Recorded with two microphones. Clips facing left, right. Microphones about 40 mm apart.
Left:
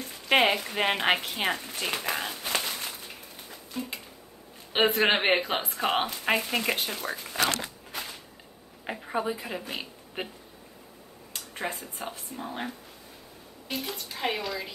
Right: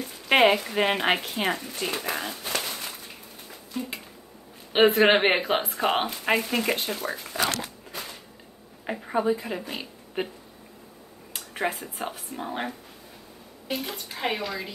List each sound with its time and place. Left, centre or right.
0.0 s a woman's voice: centre
4.7 s a woman's voice: centre
8.8 s a woman's voice: centre
11.3 s a sound: centre
11.8 s speech: right
13.7 s a woman's voice: centre